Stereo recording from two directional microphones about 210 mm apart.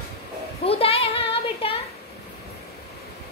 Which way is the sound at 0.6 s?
25° left (ahead or behind).